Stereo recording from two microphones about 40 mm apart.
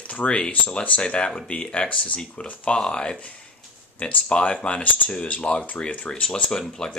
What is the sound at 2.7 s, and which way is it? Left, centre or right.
Speech, left.